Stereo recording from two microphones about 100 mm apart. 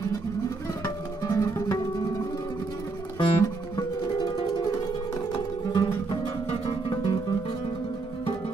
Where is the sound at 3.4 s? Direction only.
40° left (ahead or behind).